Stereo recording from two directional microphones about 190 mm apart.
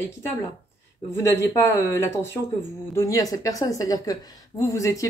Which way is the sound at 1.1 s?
15° left (ahead or behind).